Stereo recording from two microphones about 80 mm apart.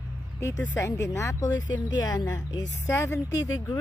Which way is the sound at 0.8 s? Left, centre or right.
Left.